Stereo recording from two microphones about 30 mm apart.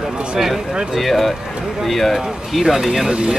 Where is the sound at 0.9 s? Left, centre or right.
Centre.